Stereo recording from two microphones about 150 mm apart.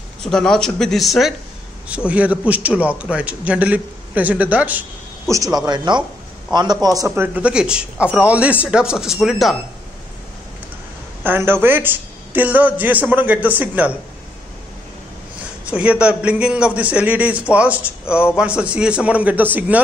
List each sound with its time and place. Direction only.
0.2 s a man's voice: 5° left (ahead or behind)
5.3 s a man's voice: 25° right (ahead or behind)
7.0 s a man's voice: 15° right (ahead or behind)
11.2 s a man's voice: 15° right (ahead or behind)
15.7 s a man's voice: 10° right (ahead or behind)